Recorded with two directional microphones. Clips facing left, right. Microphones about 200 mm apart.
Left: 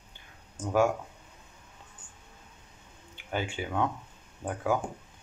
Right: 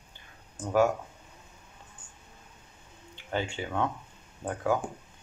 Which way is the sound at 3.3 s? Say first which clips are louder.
Right 1 dB; 15° left (ahead or behind).